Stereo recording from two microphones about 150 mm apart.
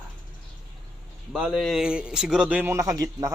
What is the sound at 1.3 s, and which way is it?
A man's voice, centre (ahead or behind).